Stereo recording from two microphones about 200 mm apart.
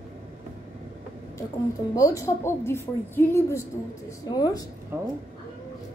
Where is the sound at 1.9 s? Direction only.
15° left (ahead or behind).